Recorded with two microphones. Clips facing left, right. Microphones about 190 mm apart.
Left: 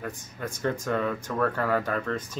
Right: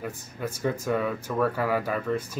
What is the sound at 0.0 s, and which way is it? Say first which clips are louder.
Speech: right 2 dB; 5° right (ahead or behind).